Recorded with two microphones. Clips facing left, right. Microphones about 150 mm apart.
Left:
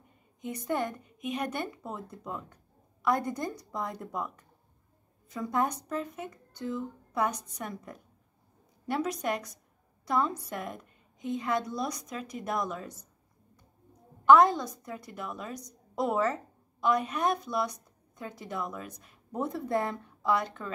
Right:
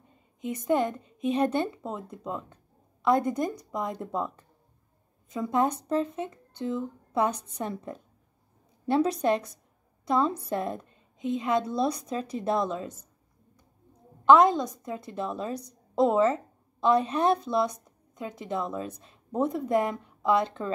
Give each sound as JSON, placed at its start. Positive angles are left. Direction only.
{"t": 0.7, "sound": "a woman's voice", "side_deg": -20}
{"t": 14.2, "sound": "speech", "side_deg": -20}